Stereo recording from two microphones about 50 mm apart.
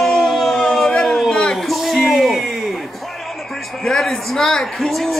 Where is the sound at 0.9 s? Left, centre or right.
Centre.